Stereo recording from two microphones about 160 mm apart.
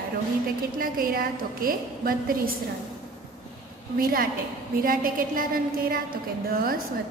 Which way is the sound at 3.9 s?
65° right (ahead or behind).